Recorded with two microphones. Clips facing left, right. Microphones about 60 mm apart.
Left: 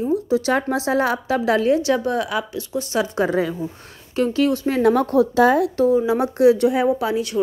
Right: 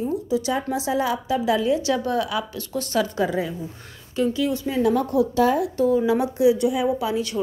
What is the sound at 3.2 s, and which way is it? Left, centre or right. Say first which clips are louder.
Speech: left 5 dB; left.